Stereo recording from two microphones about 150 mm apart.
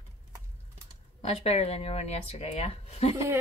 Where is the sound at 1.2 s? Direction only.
45° left (ahead or behind).